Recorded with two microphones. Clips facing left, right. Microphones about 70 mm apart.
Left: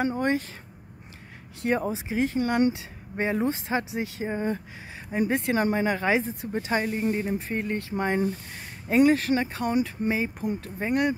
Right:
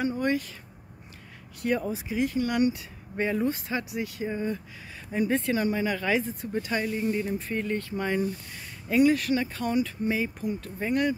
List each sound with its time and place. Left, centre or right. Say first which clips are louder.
0.0 s speech: left 2 dB; left
1.6 s speech: left 2 dB; left
5.6 s speech: left 3 dB; left
6.0 s speech: left 2 dB; left